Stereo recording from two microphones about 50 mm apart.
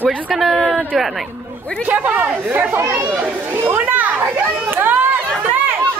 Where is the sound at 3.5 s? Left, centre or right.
Right.